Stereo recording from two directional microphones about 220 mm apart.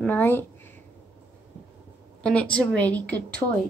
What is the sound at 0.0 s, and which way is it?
Speech, 10° left (ahead or behind).